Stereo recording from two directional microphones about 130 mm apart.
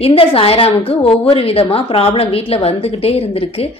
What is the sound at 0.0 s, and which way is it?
A woman's voice, 45° left (ahead or behind).